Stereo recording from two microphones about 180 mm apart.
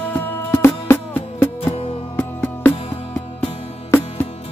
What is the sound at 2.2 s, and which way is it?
Music, 10° left (ahead or behind).